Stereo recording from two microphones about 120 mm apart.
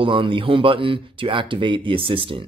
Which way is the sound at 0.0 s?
45° right (ahead or behind).